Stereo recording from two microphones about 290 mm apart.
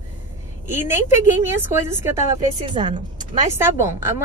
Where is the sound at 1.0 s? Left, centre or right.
Centre.